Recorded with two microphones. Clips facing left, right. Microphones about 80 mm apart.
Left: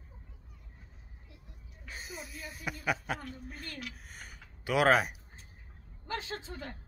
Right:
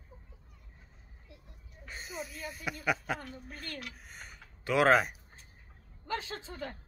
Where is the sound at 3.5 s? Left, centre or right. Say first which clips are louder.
Right 2 dB; right.